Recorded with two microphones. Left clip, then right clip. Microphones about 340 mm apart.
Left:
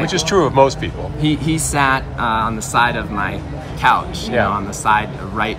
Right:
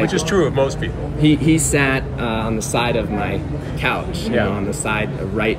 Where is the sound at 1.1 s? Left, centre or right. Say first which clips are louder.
Right 4 dB; centre.